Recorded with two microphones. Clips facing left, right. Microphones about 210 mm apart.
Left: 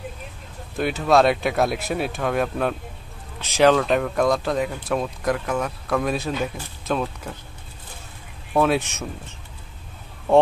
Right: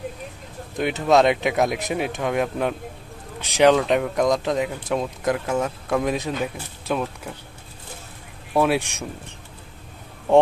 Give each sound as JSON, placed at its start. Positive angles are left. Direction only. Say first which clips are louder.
{"t": 0.7, "sound": "speech", "louder": "even", "side_deg": -20}
{"t": 8.5, "sound": "speech", "louder": "even", "side_deg": -10}